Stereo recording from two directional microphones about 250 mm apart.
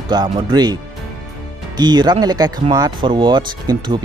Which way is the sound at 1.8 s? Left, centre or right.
Centre.